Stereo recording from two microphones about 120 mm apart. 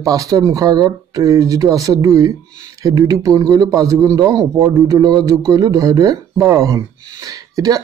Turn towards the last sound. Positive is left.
turn(degrees=-30)  # may be behind; listen again after turning